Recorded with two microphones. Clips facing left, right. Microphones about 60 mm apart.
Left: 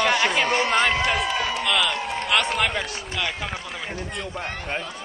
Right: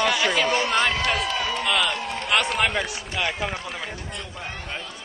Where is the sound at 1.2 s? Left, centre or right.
Centre.